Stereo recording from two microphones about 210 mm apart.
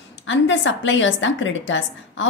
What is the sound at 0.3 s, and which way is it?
A woman's voice, 65° left (ahead or behind).